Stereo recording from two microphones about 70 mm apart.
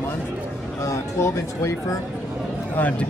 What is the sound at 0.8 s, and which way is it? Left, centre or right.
Speech, left.